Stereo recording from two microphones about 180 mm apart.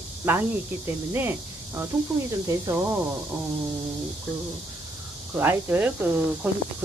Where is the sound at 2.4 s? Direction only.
15° right (ahead or behind).